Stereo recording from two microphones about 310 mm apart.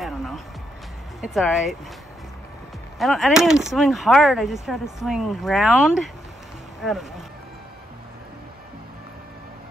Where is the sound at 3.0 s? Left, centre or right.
Centre.